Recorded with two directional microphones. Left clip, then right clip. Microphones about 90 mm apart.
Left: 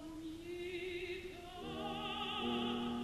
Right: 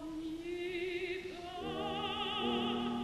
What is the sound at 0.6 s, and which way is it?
Music, 30° left (ahead or behind).